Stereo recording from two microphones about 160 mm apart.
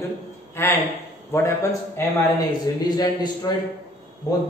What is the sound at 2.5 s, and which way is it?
A man's voice, 25° left (ahead or behind).